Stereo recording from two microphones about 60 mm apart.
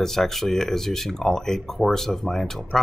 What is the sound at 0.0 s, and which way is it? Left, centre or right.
Speech, centre.